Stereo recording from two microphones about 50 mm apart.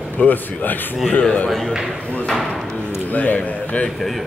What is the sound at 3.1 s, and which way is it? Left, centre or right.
Speech, left.